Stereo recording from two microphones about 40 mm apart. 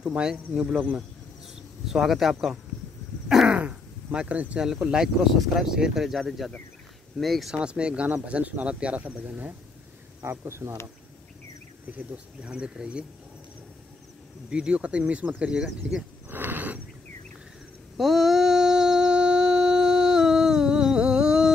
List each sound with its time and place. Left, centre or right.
0.0 s speech: right
1.5 s speech: centre
3.6 s a sound: right
4.6 s speech: right
4.9 s speech: centre
7.5 s speech: right
10.2 s speech: right
12.4 s speech: right
14.5 s speech: right
16.3 s a sound: right
17.9 s a sound: centre